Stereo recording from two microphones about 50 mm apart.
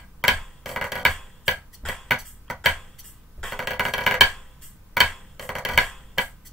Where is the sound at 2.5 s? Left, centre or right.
Centre.